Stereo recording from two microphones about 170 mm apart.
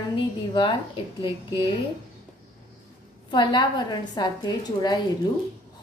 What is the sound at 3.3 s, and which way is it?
A woman's voice, 25° left (ahead or behind).